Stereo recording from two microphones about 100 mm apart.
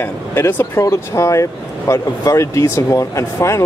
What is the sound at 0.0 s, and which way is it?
Speech, 20° left (ahead or behind).